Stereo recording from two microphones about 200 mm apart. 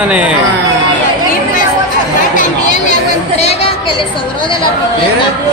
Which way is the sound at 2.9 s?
35° left (ahead or behind).